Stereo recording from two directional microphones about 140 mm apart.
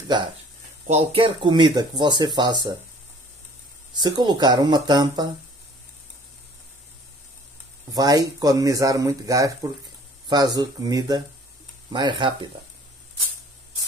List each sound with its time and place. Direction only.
0.8 s speech: 40° right (ahead or behind)
3.9 s speech: 30° right (ahead or behind)
7.9 s speech: 25° right (ahead or behind)